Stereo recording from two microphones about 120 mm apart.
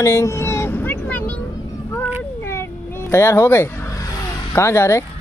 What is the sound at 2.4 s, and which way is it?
Cat, 20° left (ahead or behind).